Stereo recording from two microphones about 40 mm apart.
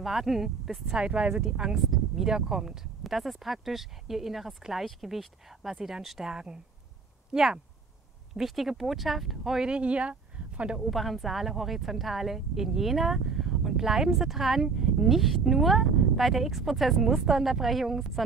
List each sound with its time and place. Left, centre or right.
0.0 s speech: centre
0.9 s speech: right
1.3 s speech: centre
3.0 s speech: centre
8.4 s speech: centre
9.6 s speech: right
10.9 s speech: centre